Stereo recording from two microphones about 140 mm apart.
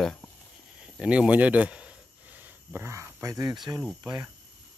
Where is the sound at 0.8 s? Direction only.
10° right (ahead or behind); by 4.3 s 25° right (ahead or behind).